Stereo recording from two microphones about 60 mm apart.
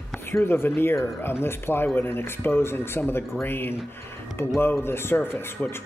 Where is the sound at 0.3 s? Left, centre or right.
Left.